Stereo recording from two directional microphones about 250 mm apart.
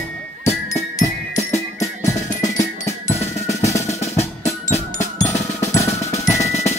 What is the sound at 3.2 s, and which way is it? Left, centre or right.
Drum, left.